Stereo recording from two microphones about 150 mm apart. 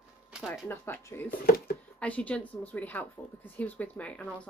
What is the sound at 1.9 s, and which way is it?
Speech, 10° left (ahead or behind).